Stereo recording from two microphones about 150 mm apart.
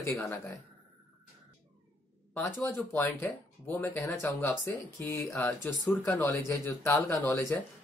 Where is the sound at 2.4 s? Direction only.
15° left (ahead or behind).